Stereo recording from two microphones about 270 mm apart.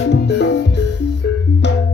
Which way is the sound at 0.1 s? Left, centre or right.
Left.